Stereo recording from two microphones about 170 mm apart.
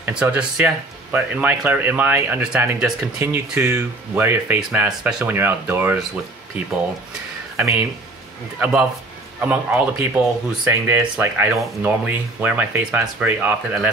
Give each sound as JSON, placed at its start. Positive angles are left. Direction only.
{"t": 0.0, "sound": "speech", "side_deg": -10}
{"t": 7.5, "sound": "speech", "side_deg": -15}
{"t": 9.4, "sound": "speech", "side_deg": -10}